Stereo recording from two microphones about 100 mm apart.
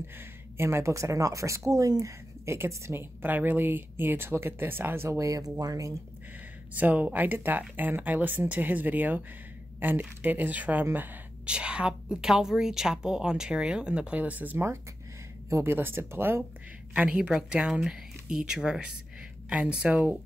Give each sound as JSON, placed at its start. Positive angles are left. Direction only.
{"t": 0.6, "sound": "a woman's voice", "side_deg": -25}
{"t": 6.7, "sound": "a woman's voice", "side_deg": -15}
{"t": 16.9, "sound": "speech", "side_deg": -15}